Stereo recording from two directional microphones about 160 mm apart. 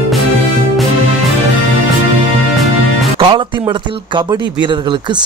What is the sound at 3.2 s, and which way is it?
Speech, 30° right (ahead or behind).